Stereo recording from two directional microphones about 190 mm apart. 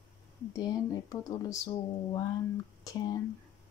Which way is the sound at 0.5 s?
20° left (ahead or behind).